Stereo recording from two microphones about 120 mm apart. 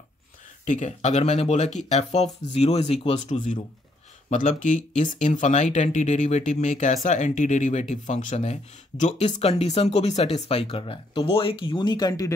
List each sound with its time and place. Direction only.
0.7 s speech: 80° left; by 3.3 s 55° left (ahead or behind)
3.3 s speech: 90° left
9.0 s speech: 65° left (ahead or behind); by 12.3 s 30° left (ahead or behind)